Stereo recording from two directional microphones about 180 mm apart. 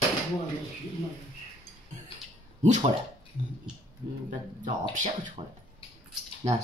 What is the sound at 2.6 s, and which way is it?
Speech, 40° right (ahead or behind).